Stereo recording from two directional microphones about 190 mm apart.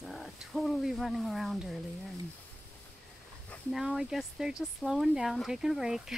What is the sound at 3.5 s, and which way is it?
Speech, centre (ahead or behind).